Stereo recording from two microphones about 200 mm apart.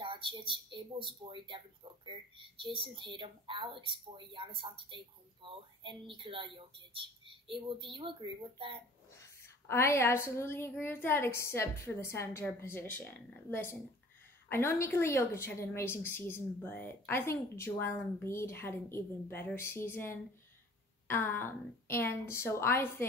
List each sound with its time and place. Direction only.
0.0 s speech: 25° right (ahead or behind)
9.1 s a woman's voice: 10° left (ahead or behind)